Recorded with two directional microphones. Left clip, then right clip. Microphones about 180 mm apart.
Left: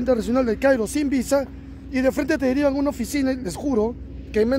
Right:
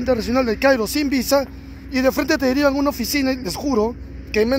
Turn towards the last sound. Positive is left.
turn(degrees=-5)  # may be behind; listen again after turning